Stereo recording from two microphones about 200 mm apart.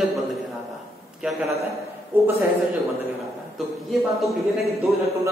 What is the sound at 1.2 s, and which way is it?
Speech, 5° right (ahead or behind).